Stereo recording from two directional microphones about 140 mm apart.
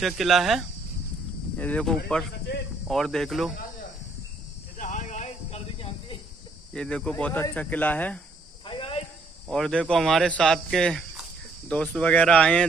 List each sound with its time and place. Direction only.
0.0 s speech: centre (ahead or behind)
1.6 s speech: 10° left (ahead or behind)
4.7 s a sound: 65° left (ahead or behind)
5.8 s cricket: 40° left (ahead or behind)
6.7 s speech: 5° left (ahead or behind)
8.6 s cricket: 40° left (ahead or behind)
9.5 s speech: 5° left (ahead or behind)